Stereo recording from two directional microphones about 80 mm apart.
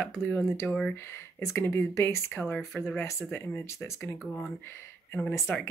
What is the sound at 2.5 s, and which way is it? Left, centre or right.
Speech, centre.